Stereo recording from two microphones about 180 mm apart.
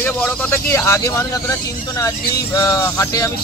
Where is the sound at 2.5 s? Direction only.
20° left (ahead or behind).